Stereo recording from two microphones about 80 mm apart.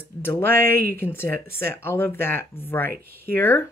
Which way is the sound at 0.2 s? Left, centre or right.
Left.